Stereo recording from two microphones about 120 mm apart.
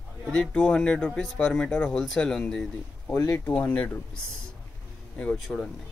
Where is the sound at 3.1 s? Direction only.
25° left (ahead or behind).